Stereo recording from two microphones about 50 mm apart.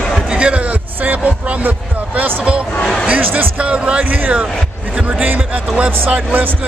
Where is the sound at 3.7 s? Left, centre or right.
Right.